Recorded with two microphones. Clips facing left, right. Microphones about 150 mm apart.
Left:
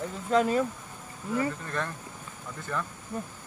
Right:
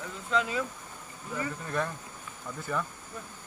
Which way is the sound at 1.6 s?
5° right (ahead or behind).